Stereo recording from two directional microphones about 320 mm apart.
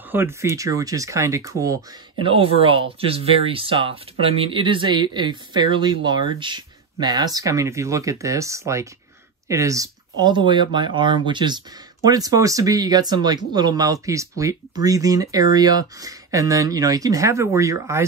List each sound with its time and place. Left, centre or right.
0.1 s speech: centre